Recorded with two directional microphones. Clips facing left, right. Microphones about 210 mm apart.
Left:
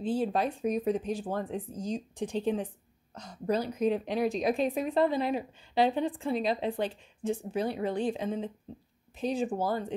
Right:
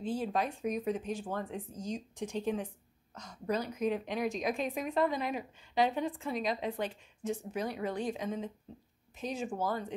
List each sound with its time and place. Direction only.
0.0 s a woman's voice: 30° left (ahead or behind)